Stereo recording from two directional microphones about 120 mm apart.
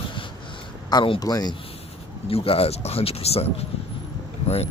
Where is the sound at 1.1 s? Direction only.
30° left (ahead or behind).